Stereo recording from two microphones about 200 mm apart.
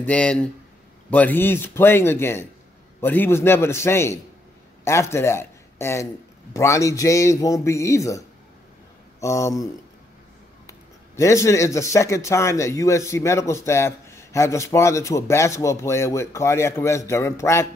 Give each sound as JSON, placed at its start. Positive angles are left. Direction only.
{"t": 0.0, "sound": "speech", "side_deg": 5}
{"t": 9.2, "sound": "speech", "side_deg": 15}
{"t": 10.7, "sound": "speech", "side_deg": 15}